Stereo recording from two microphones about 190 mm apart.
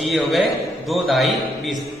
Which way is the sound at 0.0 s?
Centre (ahead or behind).